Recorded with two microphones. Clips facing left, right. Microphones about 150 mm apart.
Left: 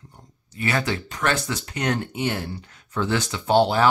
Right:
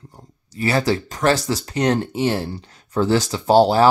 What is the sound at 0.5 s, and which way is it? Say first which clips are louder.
Speech: right 6 dB; 35° right (ahead or behind).